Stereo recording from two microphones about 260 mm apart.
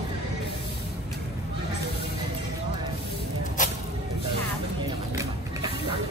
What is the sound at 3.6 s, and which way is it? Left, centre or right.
Music, left.